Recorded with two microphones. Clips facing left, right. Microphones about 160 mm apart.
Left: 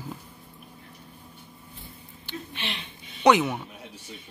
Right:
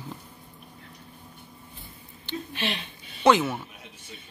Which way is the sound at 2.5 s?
35° right (ahead or behind).